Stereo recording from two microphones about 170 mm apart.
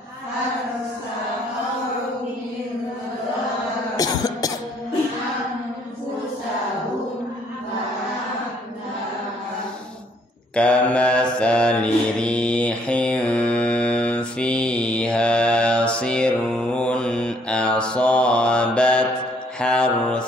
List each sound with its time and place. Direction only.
3.9 s cough: 20° left (ahead or behind)
10.5 s mantra: 5° left (ahead or behind)